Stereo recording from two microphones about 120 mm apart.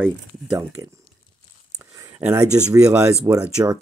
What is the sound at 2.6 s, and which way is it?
Speech, 30° right (ahead or behind).